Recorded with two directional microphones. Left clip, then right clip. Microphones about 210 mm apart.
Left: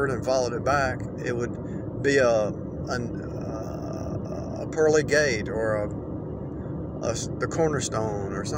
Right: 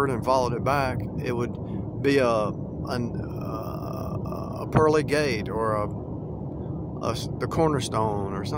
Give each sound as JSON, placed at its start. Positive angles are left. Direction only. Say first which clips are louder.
{"t": 0.0, "sound": "speech", "louder": "right 1 dB", "side_deg": -20}
{"t": 4.7, "sound": "speech", "louder": "left 1 dB", "side_deg": -20}
{"t": 7.1, "sound": "speech", "louder": "left 1 dB", "side_deg": -20}